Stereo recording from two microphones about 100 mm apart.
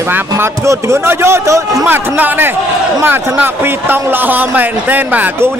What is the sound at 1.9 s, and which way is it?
A man's voice, 20° right (ahead or behind).